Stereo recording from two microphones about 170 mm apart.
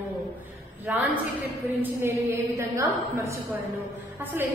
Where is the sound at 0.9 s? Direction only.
10° right (ahead or behind).